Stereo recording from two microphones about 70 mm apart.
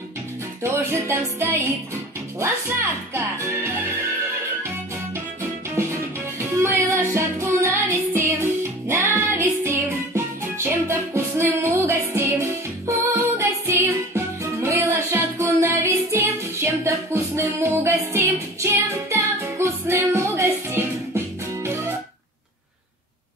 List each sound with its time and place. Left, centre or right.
0.7 s speech: right
4.6 s music: right